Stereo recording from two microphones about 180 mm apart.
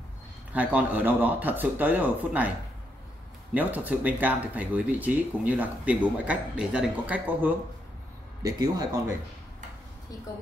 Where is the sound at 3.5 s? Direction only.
10° right (ahead or behind).